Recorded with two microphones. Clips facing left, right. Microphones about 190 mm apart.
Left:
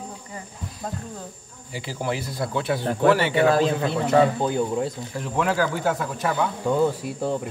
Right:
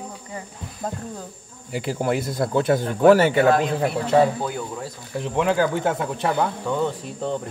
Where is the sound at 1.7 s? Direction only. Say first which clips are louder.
Right 5 dB; 55° right (ahead or behind).